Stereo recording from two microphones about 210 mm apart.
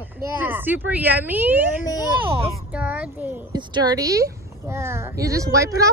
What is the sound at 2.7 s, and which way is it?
Speech, 5° right (ahead or behind).